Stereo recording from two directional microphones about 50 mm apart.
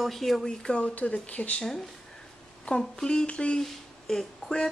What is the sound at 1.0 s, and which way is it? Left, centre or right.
Speech, left.